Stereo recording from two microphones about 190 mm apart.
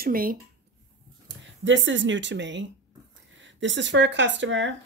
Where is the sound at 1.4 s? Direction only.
75° right (ahead or behind).